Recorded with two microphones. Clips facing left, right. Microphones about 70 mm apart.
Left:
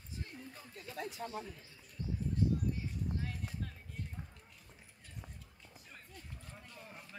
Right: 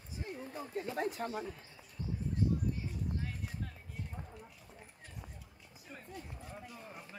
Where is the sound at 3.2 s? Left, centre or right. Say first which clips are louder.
Even; centre.